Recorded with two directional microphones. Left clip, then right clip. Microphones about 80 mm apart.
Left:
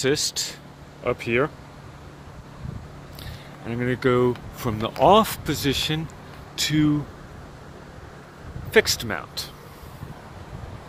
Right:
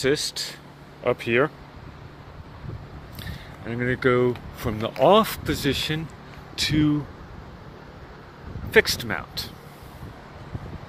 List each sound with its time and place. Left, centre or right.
0.0 s speech: left
1.0 s speech: right
3.6 s speech: centre
4.7 s speech: centre; by 7.0 s left
8.7 s speech: centre